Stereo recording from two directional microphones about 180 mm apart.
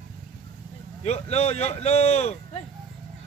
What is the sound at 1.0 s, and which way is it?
Speech, 40° left (ahead or behind).